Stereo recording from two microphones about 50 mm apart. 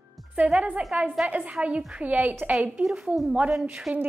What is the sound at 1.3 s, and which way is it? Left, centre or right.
A woman's voice, right.